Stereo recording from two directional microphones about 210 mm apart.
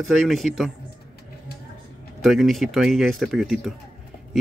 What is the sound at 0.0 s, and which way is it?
Speech, centre (ahead or behind).